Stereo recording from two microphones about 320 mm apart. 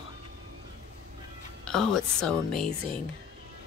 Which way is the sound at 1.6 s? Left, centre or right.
Centre.